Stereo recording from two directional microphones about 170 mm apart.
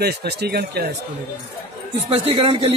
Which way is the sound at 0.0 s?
70° right (ahead or behind).